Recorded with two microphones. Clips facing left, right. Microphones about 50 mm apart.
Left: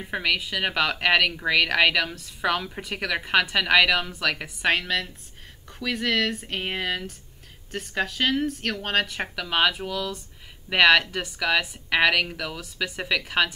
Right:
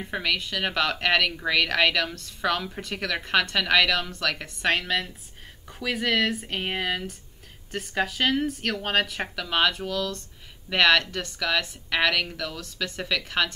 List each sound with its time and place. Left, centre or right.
0.0 s speech: centre